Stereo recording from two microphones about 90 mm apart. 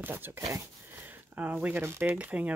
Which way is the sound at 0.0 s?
25° right (ahead or behind).